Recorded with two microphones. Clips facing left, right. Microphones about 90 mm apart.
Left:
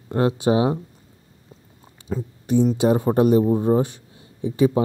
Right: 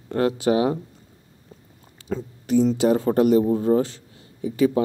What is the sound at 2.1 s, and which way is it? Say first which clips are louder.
Speech: even; 10° left (ahead or behind).